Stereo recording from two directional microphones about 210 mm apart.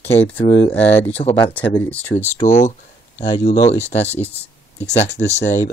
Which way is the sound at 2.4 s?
35° left (ahead or behind).